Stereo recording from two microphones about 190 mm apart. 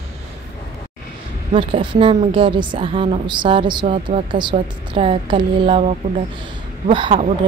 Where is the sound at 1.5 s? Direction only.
25° right (ahead or behind).